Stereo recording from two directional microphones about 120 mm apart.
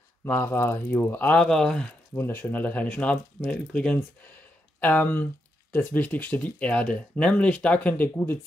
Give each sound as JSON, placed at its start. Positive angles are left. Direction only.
{"t": 0.2, "sound": "speech", "side_deg": 20}
{"t": 2.1, "sound": "speech", "side_deg": 20}